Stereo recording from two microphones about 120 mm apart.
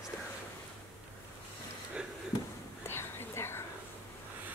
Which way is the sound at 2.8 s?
20° left (ahead or behind).